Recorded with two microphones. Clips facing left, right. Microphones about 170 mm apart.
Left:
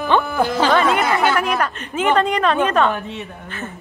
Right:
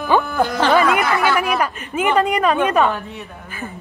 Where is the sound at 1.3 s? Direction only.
5° right (ahead or behind).